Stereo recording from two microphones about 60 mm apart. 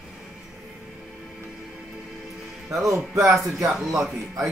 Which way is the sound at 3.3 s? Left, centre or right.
Centre.